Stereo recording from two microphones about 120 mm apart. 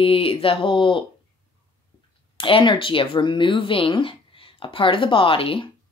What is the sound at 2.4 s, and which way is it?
Speech, 45° left (ahead or behind).